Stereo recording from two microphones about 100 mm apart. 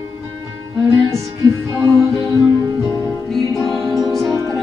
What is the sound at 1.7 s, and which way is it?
Music, 30° right (ahead or behind).